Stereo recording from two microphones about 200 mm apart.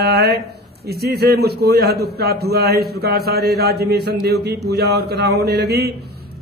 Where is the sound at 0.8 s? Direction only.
55° right (ahead or behind).